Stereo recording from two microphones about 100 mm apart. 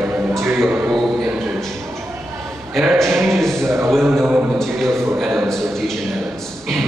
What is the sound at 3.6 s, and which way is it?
Speech, 25° right (ahead or behind).